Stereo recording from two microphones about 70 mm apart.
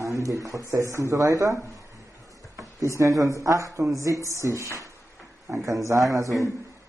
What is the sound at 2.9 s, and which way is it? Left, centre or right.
Speech, right.